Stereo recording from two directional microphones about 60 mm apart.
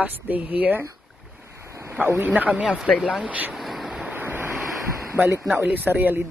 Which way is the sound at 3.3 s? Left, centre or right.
Right.